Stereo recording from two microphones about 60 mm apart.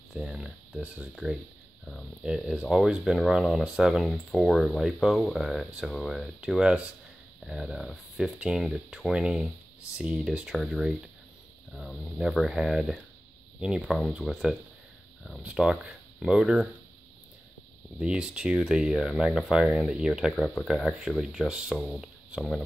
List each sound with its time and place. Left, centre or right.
0.1 s speech: centre
4.0 s speech: centre
7.4 s speech: centre
10.5 s speech: centre
13.8 s speech: centre
17.9 s speech: centre
20.3 s speech: centre
20.6 s speech: centre